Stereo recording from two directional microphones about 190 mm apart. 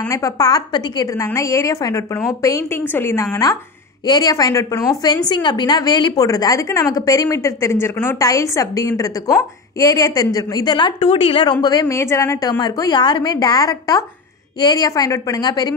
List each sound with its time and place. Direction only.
0.1 s a woman's voice: 20° left (ahead or behind)